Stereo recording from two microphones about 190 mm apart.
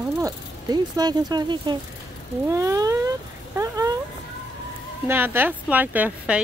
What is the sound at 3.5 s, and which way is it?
Speech, 15° right (ahead or behind).